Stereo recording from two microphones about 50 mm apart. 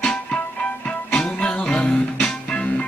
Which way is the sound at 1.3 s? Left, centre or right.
Left.